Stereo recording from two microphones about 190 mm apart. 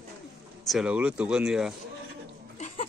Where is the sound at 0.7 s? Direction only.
5° right (ahead or behind).